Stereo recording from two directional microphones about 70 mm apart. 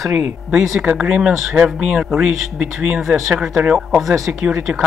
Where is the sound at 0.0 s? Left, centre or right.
Centre.